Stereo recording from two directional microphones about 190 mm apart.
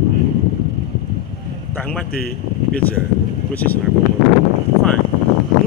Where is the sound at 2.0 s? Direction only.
50° left (ahead or behind).